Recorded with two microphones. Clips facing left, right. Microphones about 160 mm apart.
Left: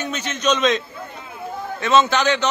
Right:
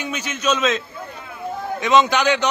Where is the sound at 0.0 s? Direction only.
10° right (ahead or behind).